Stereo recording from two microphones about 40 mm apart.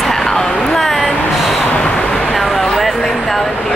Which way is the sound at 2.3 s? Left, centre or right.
Centre.